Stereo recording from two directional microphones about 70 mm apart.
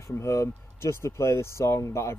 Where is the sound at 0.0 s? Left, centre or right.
Left.